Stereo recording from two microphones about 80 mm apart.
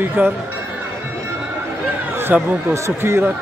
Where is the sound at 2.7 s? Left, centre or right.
Right.